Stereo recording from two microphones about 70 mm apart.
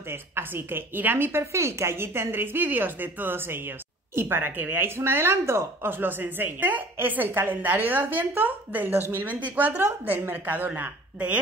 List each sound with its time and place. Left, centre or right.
0.1 s a woman's voice: right